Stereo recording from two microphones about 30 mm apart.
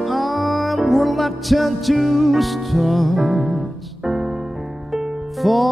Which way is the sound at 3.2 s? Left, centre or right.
Right.